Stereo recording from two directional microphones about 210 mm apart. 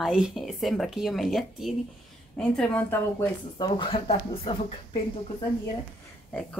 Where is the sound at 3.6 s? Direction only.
25° left (ahead or behind).